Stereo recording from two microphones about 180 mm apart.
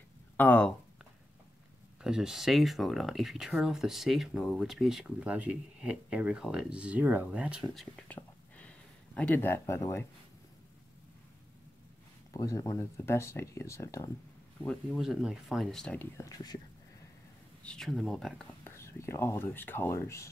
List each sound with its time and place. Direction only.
0.4 s speech: 10° left (ahead or behind)
2.0 s speech: 5° right (ahead or behind); by 10.0 s 15° left (ahead or behind)
12.4 s speech: 20° left (ahead or behind)
14.6 s speech: 5° left (ahead or behind)
17.6 s speech: centre (ahead or behind)
18.6 s speech: 15° left (ahead or behind)